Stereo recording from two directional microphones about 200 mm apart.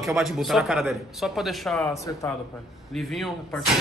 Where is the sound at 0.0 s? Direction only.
Centre (ahead or behind).